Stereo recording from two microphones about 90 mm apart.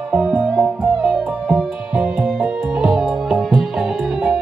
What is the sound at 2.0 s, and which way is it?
Music, 10° right (ahead or behind).